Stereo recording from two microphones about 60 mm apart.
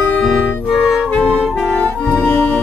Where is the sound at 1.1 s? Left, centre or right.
Left.